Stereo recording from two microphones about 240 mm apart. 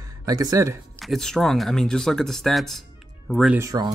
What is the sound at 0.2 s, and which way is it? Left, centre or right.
Speech, centre.